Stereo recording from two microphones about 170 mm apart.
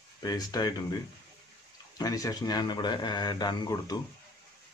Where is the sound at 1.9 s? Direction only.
20° left (ahead or behind).